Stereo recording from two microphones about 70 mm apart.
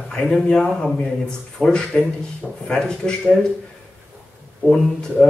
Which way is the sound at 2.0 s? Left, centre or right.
Centre.